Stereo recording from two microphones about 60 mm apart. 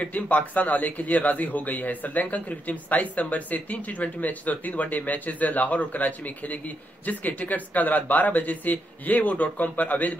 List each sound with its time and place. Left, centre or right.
0.0 s a man's voice: left